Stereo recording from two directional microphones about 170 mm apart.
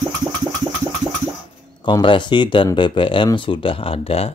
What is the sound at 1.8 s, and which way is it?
Speech, 30° left (ahead or behind).